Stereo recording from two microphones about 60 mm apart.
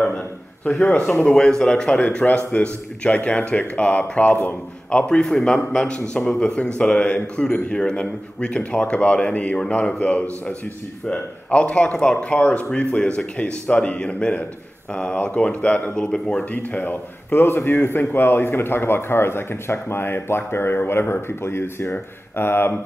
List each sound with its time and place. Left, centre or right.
0.7 s a man's voice: centre
16.3 s a man's voice: left